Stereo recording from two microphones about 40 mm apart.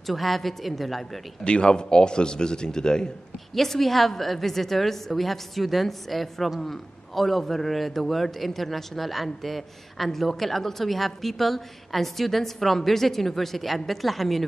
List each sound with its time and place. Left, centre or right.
0.0 s a man's voice: centre
1.4 s a man's voice: left
3.5 s a man's voice: centre